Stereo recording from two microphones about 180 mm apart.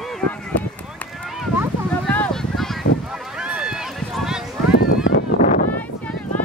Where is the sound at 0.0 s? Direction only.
5° left (ahead or behind).